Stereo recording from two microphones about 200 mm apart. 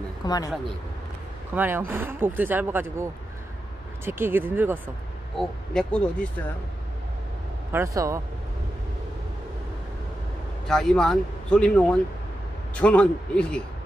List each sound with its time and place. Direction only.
0.2 s speech: 20° left (ahead or behind)
1.5 s speech: 10° right (ahead or behind)
5.4 s speech: 5° left (ahead or behind)
7.7 s speech: 15° right (ahead or behind)
10.7 s speech: 5° left (ahead or behind)